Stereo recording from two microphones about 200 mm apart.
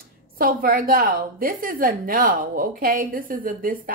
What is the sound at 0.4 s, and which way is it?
Speech, 45° right (ahead or behind).